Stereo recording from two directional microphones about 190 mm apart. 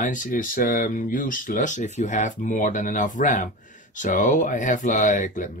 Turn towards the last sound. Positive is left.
turn(degrees=40)  # may be behind; listen again after turning